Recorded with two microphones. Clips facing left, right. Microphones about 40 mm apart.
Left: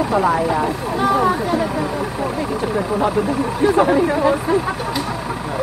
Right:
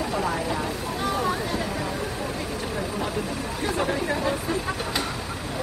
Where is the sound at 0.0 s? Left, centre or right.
Left.